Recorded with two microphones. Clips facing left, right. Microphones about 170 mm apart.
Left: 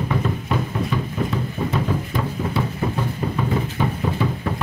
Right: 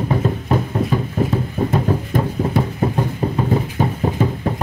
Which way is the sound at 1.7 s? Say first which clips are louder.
Right 5 dB; 50° right (ahead or behind).